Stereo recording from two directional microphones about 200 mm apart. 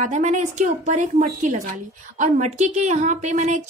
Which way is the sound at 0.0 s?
35° right (ahead or behind).